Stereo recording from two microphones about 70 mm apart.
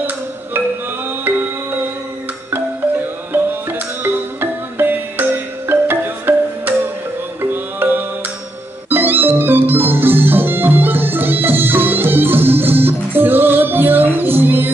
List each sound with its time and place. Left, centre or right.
4.0 s music: right